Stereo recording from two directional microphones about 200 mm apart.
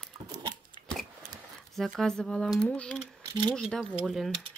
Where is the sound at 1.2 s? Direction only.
45° right (ahead or behind).